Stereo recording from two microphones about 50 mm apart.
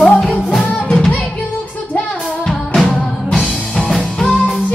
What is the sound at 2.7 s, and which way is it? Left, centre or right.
Music, centre.